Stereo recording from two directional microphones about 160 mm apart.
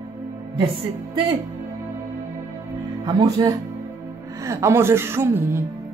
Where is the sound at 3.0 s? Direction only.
25° right (ahead or behind).